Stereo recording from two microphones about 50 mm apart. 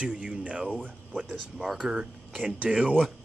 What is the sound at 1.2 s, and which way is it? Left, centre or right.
Speech, centre.